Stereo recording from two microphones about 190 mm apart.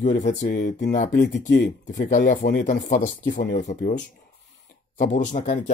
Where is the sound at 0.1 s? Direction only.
65° left (ahead or behind).